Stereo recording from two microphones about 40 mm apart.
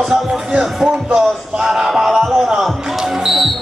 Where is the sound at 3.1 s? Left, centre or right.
Centre.